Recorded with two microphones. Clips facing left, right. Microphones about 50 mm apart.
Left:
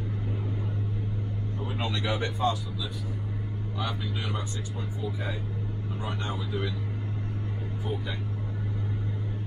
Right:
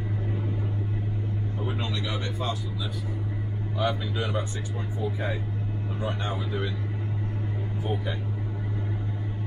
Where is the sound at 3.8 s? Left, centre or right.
Right.